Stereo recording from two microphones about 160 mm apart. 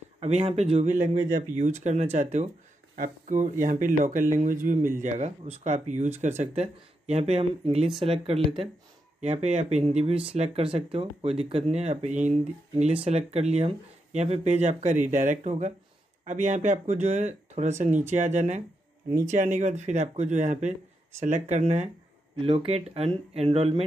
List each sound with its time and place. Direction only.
0.2 s speech: 40° right (ahead or behind)
22.4 s speech: 35° right (ahead or behind)